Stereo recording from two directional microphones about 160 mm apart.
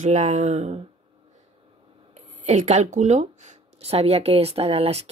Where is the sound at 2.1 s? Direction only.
50° right (ahead or behind).